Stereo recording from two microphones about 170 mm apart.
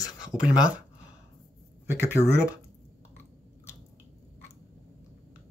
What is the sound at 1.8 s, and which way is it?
Speech, 10° right (ahead or behind).